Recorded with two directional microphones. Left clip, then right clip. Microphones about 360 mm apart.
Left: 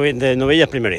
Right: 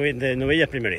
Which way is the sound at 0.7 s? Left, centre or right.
Centre.